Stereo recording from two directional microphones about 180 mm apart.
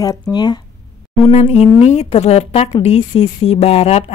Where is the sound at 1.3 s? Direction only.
35° left (ahead or behind).